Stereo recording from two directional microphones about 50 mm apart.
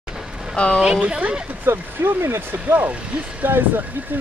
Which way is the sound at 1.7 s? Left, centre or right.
Right.